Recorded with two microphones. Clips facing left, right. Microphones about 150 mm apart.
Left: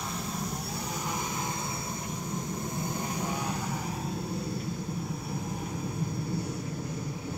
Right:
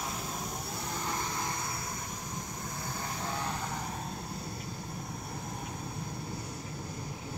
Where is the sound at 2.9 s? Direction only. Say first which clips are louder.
Left 4 dB; 20° left (ahead or behind).